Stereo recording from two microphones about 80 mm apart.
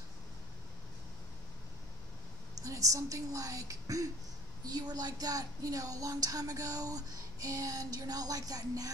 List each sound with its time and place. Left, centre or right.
2.5 s a woman's voice: right